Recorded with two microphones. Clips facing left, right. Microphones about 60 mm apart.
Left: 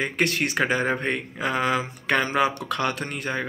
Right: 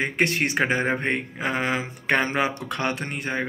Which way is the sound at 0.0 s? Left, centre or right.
Right.